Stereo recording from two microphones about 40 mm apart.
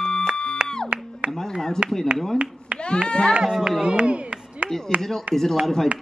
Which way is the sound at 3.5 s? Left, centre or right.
Centre.